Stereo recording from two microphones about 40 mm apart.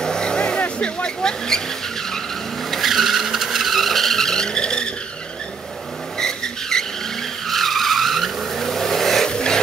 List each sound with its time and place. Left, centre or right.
0.0 s vehicle: centre
0.7 s speech: left
2.7 s vehicle: centre
6.1 s vehicle: centre
7.4 s vehicle: centre
9.3 s a sound: left